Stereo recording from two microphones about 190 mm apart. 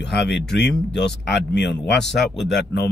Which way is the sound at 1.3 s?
65° left (ahead or behind).